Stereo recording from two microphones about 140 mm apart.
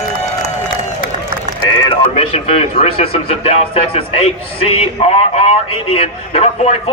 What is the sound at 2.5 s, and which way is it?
A man's voice, 45° left (ahead or behind).